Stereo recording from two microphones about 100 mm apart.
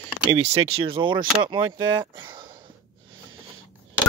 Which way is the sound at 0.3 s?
75° right (ahead or behind).